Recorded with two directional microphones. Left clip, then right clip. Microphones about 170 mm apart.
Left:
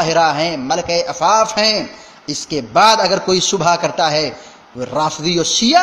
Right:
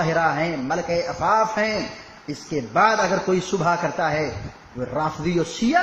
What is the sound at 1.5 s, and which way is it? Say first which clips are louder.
A man's voice: left 7 dB; 20° left (ahead or behind).